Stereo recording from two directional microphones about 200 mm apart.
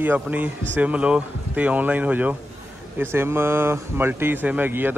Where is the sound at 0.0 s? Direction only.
10° right (ahead or behind).